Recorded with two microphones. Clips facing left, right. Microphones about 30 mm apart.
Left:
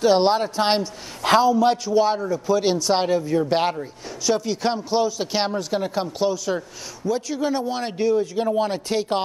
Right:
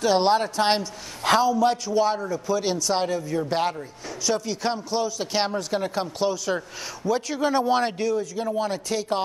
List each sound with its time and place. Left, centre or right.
0.0 s speech: centre
4.3 s a man's voice: centre
8.0 s speech: left